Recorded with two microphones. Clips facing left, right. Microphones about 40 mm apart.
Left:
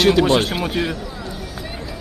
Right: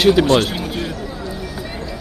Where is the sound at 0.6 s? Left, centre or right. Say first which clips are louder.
Left 3 dB; left.